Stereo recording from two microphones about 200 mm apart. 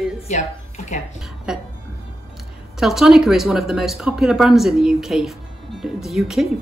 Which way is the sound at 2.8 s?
Centre (ahead or behind).